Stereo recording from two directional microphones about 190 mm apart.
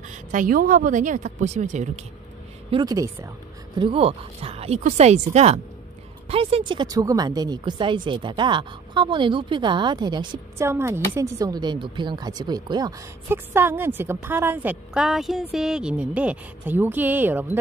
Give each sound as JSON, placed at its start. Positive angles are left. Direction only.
{"t": 0.1, "sound": "speech", "side_deg": -45}
{"t": 2.7, "sound": "speech", "side_deg": -20}